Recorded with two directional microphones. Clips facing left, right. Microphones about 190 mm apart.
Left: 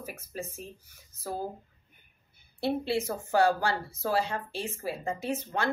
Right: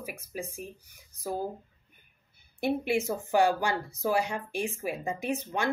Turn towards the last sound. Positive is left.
turn(degrees=-15)  # may be behind; listen again after turning